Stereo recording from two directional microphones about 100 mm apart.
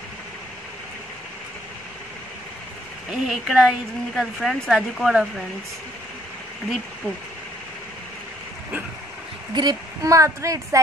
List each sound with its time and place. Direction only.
3.1 s a woman's voice: 5° right (ahead or behind)
9.5 s a woman's voice: 45° right (ahead or behind)